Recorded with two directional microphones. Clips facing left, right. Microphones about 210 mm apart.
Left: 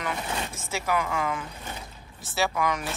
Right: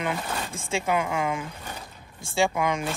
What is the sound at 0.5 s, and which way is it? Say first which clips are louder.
Speech: right 5 dB; 25° right (ahead or behind).